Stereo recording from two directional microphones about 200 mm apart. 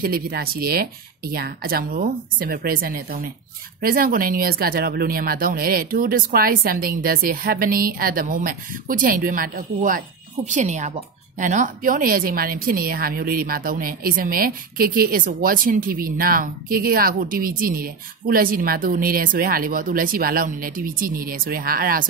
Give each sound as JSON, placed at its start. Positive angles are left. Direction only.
{"t": 0.0, "sound": "speech", "side_deg": -50}